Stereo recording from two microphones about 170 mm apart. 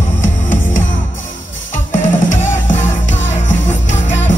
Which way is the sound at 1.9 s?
50° left (ahead or behind).